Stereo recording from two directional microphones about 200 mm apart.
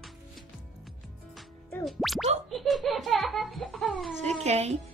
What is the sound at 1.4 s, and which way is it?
Music, centre (ahead or behind).